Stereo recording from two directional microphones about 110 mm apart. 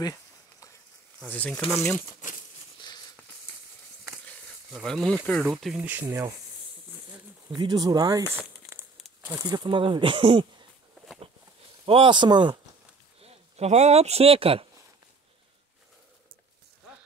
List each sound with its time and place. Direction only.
0.0 s a sound: 30° left (ahead or behind)
1.2 s speech: 10° left (ahead or behind)
4.8 s speech: centre (ahead or behind)
5.4 s speech: 5° right (ahead or behind)
7.4 s speech: 35° right (ahead or behind)
8.6 s crumpling: centre (ahead or behind)
9.4 s speech: 40° right (ahead or behind)
11.8 s speech: 50° right (ahead or behind)
13.2 s speech: 75° right (ahead or behind)